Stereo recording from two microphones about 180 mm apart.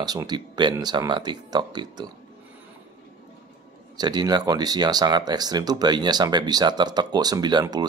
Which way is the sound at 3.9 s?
20° right (ahead or behind).